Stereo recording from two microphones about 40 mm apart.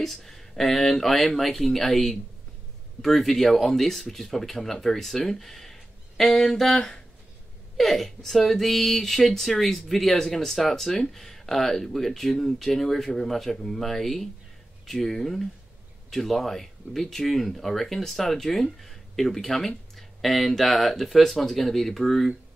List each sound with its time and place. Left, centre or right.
0.0 s speech: centre